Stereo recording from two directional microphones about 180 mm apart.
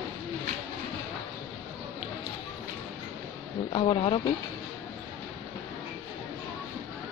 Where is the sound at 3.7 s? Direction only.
25° left (ahead or behind).